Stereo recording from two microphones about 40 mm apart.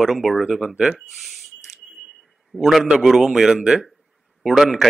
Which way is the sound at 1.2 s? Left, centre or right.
Centre.